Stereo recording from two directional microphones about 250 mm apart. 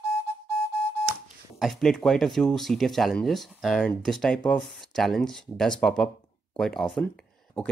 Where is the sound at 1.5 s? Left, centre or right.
Centre.